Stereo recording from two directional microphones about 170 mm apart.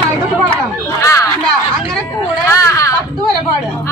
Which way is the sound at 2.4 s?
20° left (ahead or behind).